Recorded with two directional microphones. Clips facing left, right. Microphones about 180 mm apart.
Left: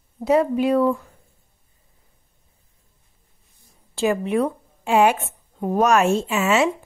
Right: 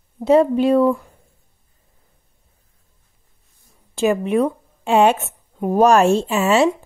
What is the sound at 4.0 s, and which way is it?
A woman's voice, 20° right (ahead or behind).